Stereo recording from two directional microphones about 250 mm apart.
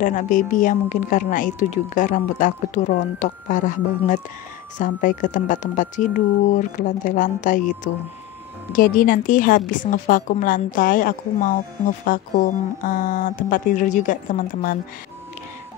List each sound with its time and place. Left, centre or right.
0.0 s a woman's voice: left